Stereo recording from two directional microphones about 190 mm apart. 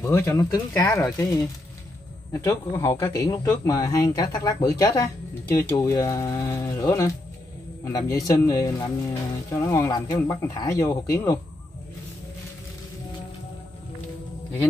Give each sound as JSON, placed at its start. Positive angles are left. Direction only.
{"t": 0.0, "sound": "speech", "side_deg": 10}
{"t": 2.4, "sound": "speech", "side_deg": 15}